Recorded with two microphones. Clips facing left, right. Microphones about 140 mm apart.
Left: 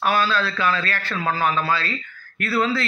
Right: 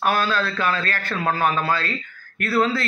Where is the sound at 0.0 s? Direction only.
50° right (ahead or behind).